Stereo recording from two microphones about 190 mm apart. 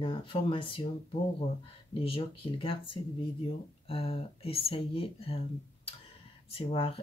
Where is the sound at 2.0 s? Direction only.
30° left (ahead or behind).